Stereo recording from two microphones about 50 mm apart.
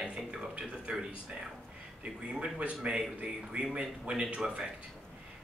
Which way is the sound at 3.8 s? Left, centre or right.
Centre.